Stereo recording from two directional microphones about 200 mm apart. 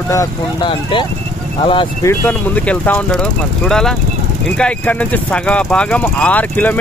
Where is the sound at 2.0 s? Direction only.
10° left (ahead or behind).